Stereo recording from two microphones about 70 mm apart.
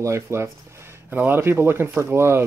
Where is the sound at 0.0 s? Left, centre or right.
Right.